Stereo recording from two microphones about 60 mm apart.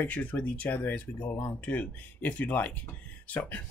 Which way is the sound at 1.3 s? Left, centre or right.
Left.